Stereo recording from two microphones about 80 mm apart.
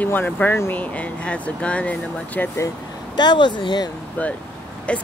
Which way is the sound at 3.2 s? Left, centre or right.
Left.